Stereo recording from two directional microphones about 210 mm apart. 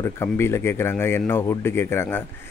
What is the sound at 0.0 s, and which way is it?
Speech, 10° left (ahead or behind).